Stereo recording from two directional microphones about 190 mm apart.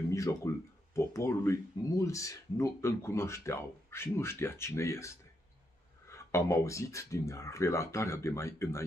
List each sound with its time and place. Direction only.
0.1 s speech: 15° left (ahead or behind)